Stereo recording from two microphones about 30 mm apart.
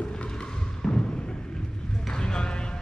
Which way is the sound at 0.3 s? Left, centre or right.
Left.